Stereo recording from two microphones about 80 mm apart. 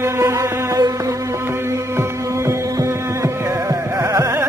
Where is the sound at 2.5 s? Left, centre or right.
Right.